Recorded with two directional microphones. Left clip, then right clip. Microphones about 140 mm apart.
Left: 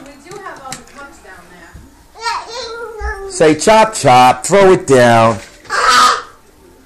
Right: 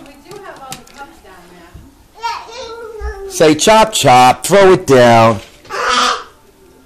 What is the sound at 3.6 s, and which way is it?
Music, 20° right (ahead or behind).